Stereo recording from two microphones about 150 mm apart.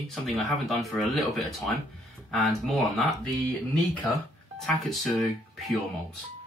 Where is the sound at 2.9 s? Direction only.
Centre (ahead or behind).